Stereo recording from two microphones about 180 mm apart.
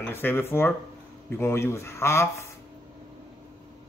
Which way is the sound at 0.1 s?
10° left (ahead or behind).